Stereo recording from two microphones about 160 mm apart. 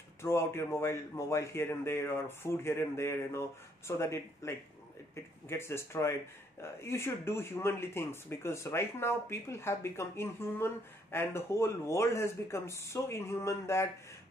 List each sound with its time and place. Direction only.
0.2 s speech: 15° left (ahead or behind)